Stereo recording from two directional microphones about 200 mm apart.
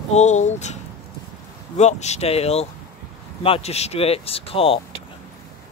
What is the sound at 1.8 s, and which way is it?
Speech, 35° left (ahead or behind).